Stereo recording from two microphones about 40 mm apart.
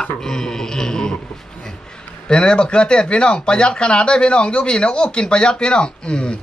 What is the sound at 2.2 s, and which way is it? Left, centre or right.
Speech, left.